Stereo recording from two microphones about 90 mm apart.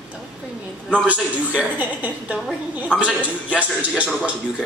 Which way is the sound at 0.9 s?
15° right (ahead or behind).